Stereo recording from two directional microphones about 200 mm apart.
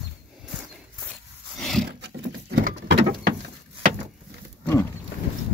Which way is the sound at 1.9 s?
60° right (ahead or behind).